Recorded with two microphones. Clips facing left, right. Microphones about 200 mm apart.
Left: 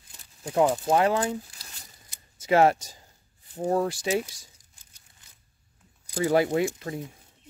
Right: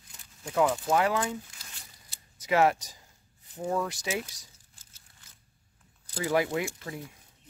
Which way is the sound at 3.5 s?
35° left (ahead or behind).